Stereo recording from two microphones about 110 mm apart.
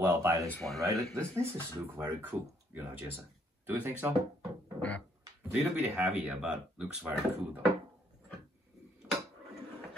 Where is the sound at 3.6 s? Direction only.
15° right (ahead or behind).